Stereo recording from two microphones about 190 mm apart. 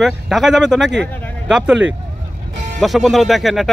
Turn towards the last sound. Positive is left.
turn(degrees=0)  # may be behind; listen again after turning